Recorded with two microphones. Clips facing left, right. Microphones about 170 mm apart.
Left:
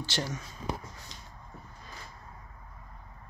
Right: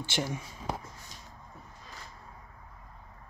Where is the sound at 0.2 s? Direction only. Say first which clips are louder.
Right 2 dB; 15° right (ahead or behind).